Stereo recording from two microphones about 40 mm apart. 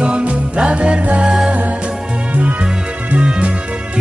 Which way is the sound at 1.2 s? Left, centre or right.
Centre.